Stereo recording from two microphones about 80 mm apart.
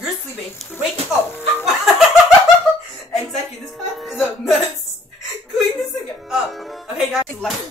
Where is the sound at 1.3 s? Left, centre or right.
Left.